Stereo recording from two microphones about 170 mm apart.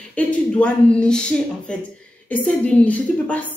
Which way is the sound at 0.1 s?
5° left (ahead or behind).